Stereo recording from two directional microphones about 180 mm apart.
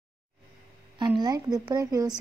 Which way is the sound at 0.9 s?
25° right (ahead or behind).